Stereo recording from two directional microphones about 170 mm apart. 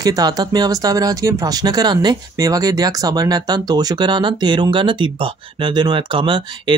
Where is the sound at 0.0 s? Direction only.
20° right (ahead or behind).